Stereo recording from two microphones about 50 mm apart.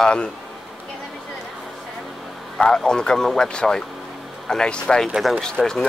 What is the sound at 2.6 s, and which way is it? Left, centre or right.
Speech, centre.